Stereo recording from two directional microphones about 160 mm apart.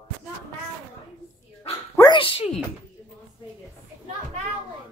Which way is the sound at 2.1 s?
35° left (ahead or behind).